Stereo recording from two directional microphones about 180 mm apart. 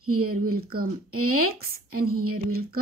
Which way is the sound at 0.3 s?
55° right (ahead or behind).